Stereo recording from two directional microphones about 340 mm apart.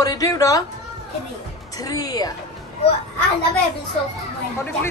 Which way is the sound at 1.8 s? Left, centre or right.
Centre.